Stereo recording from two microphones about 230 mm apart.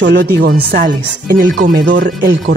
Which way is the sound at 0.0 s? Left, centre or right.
Right.